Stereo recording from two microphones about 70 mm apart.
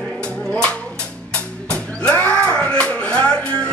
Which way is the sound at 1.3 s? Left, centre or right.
Centre.